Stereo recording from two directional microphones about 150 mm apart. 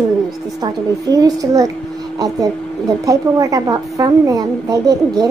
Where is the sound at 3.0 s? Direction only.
25° right (ahead or behind).